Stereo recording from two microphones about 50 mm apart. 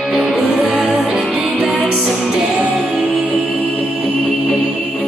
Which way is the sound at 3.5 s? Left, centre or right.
Centre.